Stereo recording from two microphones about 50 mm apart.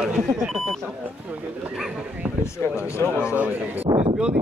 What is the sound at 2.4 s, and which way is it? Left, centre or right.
Speech, left.